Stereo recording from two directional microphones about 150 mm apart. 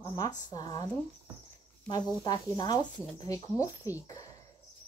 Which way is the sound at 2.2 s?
30° left (ahead or behind).